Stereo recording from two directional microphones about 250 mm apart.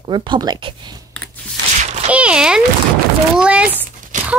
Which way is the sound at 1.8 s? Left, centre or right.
Right.